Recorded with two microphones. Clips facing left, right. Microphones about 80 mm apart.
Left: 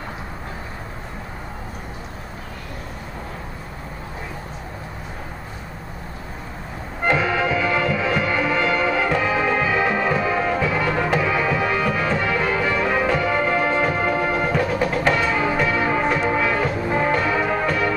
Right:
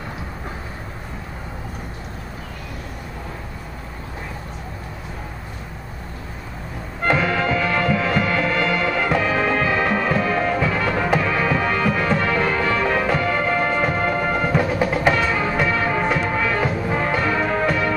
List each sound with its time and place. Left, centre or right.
7.2 s music: centre
15.1 s music: centre